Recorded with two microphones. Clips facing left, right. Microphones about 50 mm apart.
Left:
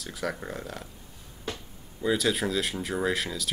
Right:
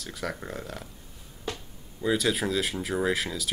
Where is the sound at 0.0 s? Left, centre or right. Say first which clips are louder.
Left 1 dB; centre.